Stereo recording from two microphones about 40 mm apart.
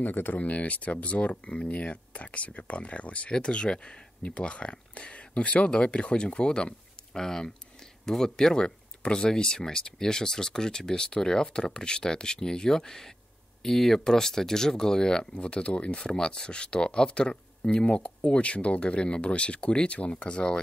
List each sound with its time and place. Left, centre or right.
0.0 s speech: left
0.4 s speech: left
7.2 s speech: centre
15.3 s speech: left
16.0 s speech: centre